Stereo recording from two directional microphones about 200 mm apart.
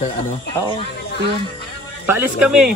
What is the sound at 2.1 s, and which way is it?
Speech, 5° right (ahead or behind).